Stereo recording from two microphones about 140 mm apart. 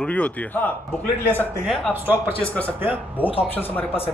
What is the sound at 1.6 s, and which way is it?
Speech, centre (ahead or behind).